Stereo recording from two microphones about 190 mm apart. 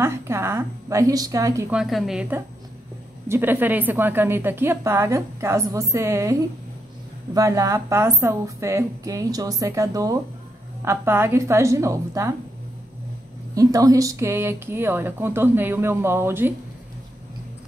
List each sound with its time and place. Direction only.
0.0 s a woman's voice: 15° right (ahead or behind)
1.7 s a woman's voice: centre (ahead or behind)
7.3 s a woman's voice: 15° right (ahead or behind)
13.6 s a woman's voice: 20° right (ahead or behind)